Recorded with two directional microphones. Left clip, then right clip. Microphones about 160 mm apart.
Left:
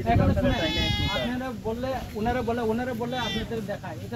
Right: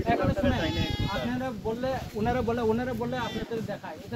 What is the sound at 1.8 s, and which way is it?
Speech, 20° right (ahead or behind).